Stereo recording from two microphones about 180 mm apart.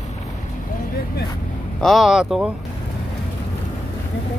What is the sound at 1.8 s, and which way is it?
Speech, centre (ahead or behind).